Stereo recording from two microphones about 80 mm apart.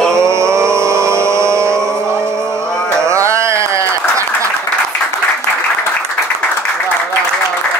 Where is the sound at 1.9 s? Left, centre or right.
Centre.